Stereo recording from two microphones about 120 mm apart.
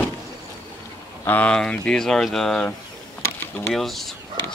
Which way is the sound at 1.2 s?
15° left (ahead or behind).